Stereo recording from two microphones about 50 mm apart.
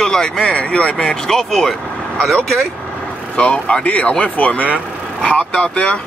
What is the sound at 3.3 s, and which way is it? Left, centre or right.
Speech, left.